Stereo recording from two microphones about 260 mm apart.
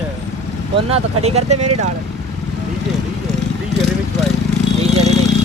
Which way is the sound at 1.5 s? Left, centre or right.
Right.